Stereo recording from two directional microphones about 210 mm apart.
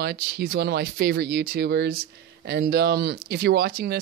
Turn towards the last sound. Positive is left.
turn(degrees=-50)  # may be behind; listen again after turning